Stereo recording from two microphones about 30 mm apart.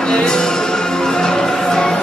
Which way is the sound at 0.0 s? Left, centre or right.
Left.